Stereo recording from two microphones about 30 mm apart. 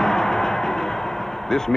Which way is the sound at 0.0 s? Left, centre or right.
Centre.